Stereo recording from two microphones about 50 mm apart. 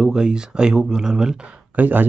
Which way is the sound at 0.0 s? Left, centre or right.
Centre.